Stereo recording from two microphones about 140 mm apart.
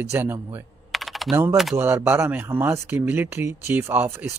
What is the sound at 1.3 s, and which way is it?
Speech, 15° right (ahead or behind).